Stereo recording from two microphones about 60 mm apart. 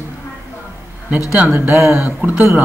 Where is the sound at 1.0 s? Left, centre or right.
Centre.